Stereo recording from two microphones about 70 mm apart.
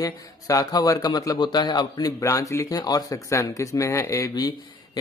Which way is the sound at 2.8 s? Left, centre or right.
Left.